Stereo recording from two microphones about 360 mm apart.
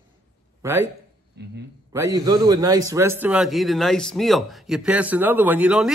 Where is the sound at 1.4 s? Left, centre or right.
Right.